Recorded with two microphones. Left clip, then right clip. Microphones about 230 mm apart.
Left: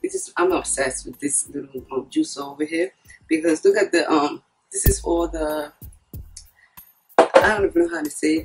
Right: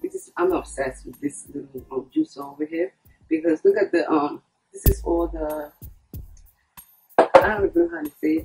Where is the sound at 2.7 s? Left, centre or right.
Centre.